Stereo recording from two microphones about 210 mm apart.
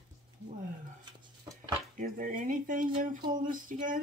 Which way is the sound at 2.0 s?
40° right (ahead or behind).